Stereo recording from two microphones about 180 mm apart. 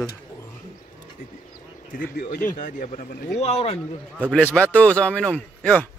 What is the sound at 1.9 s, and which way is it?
Speech, 45° left (ahead or behind).